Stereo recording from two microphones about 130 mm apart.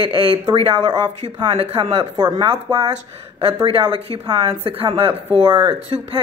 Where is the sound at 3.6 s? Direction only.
45° right (ahead or behind).